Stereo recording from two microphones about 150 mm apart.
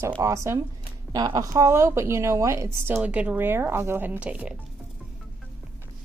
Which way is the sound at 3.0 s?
10° right (ahead or behind).